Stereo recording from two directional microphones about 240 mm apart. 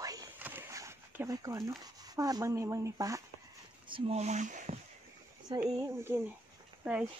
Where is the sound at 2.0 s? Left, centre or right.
Centre.